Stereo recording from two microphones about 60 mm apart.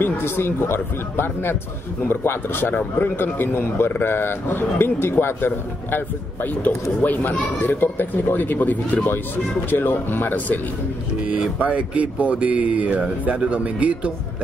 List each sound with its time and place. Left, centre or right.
0.0 s a man's voice: left
11.1 s speech: centre